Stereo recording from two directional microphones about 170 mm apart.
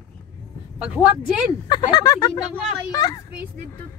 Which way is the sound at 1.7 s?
25° left (ahead or behind).